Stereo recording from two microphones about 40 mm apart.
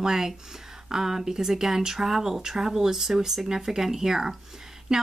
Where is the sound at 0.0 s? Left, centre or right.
Centre.